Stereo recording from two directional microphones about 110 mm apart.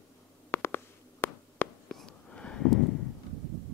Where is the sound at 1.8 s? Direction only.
10° left (ahead or behind).